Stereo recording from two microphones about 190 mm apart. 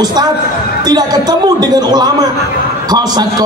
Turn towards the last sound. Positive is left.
turn(degrees=-20)  # may be behind; listen again after turning